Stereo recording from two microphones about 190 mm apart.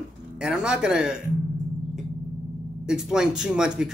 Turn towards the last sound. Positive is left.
turn(degrees=-5)  # may be behind; listen again after turning